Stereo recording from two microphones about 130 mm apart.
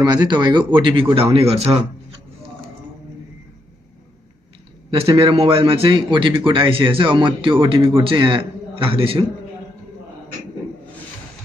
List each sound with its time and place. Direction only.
0.0 s a man's voice: 35° right (ahead or behind); by 1.8 s 50° right (ahead or behind)
4.9 s a man's voice: 45° right (ahead or behind)